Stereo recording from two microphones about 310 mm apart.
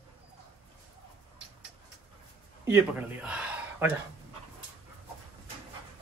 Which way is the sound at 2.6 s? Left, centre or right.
Centre.